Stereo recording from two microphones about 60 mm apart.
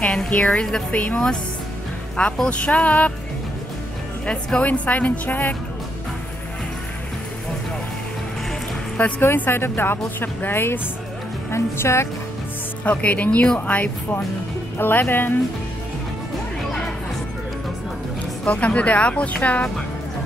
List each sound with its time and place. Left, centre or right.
0.0 s a woman's voice: centre
0.9 s a woman's voice: left
4.3 s a woman's voice: centre
9.0 s a woman's voice: left
9.4 s a woman's voice: left
11.5 s speech: left
12.8 s a woman's voice: left
18.4 s a woman's voice: left